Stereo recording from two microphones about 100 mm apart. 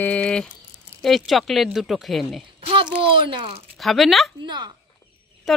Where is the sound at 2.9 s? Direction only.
60° right (ahead or behind).